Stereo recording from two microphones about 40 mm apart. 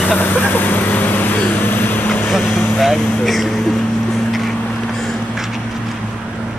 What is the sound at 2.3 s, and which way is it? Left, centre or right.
Speech, centre.